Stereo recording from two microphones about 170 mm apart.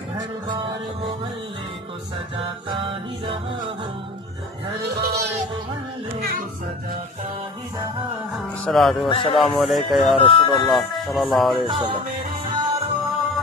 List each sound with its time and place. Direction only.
2.3 s music: 30° right (ahead or behind)
4.8 s speech: 70° right (ahead or behind)
6.1 s music: 60° right (ahead or behind)
8.3 s speech: centre (ahead or behind)
10.2 s speech: 30° left (ahead or behind)
10.7 s speech: centre (ahead or behind)
11.6 s music: 30° right (ahead or behind)